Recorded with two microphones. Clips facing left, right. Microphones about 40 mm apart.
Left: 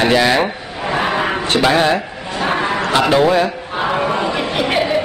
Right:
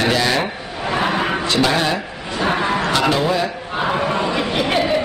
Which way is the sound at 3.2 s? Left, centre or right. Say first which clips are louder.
Left 5 dB; left.